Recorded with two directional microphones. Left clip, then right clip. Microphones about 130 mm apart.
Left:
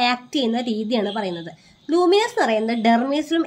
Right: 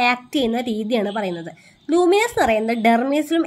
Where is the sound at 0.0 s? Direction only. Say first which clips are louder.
Right 2 dB; 30° right (ahead or behind).